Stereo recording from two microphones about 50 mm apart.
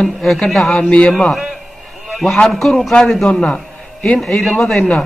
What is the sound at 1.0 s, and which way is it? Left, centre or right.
A man's voice, centre.